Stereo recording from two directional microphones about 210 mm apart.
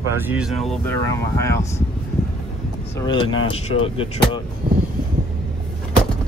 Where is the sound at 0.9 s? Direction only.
15° left (ahead or behind).